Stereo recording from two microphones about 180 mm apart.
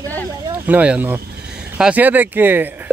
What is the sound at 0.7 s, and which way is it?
Speech, 10° right (ahead or behind).